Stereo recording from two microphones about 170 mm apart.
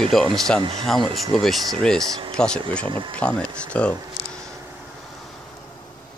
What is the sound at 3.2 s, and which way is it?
Speech, 5° left (ahead or behind).